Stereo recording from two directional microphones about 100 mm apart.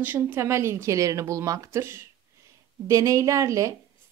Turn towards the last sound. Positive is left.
turn(degrees=-35)  # may be behind; listen again after turning